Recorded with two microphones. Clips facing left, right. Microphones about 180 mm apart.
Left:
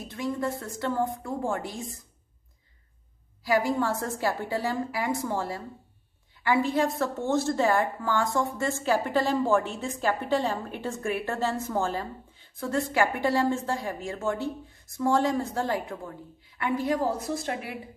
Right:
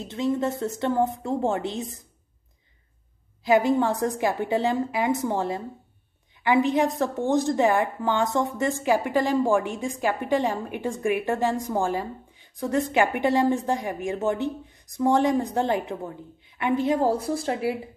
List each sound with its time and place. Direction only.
0.0 s a woman's voice: 25° right (ahead or behind)
3.4 s a woman's voice: 20° right (ahead or behind)